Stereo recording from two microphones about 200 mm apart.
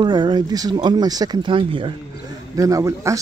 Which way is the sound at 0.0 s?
25° right (ahead or behind).